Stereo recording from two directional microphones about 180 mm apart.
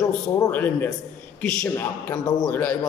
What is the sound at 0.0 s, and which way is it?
A man's voice, 15° left (ahead or behind).